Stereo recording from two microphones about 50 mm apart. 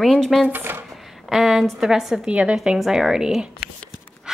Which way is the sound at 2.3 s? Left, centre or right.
Right.